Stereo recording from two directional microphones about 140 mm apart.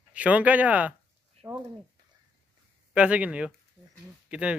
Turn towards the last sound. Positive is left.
turn(degrees=-10)  # may be behind; listen again after turning